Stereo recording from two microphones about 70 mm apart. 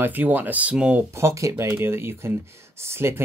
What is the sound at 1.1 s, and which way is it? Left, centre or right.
Speech, right.